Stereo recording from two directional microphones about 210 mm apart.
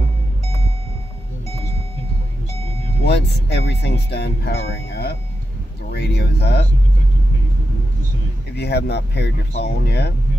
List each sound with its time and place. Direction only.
3.0 s speech: 50° left (ahead or behind)
8.5 s speech: 50° left (ahead or behind)